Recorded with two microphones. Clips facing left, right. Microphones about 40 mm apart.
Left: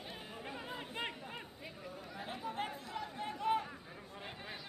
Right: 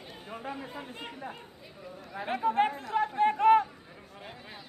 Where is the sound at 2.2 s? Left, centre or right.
Right.